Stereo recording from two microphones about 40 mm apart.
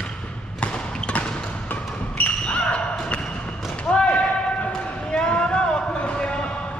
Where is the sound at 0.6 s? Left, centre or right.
Left.